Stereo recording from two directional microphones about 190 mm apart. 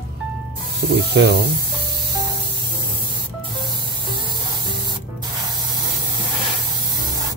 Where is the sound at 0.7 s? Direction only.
65° right (ahead or behind).